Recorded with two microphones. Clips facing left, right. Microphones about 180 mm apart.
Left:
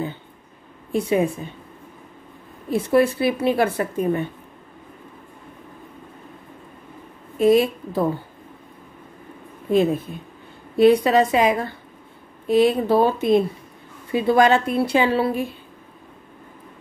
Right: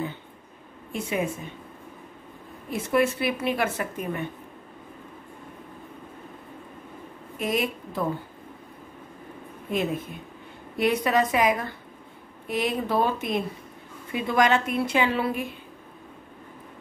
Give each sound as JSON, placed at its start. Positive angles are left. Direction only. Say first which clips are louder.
{"t": 0.9, "sound": "a woman's voice", "louder": "left 8 dB", "side_deg": 35}
{"t": 2.7, "sound": "a woman's voice", "louder": "left 6 dB", "side_deg": 30}
{"t": 7.3, "sound": "a woman's voice", "louder": "left 11 dB", "side_deg": 30}
{"t": 10.8, "sound": "a woman's voice", "louder": "left 8 dB", "side_deg": 30}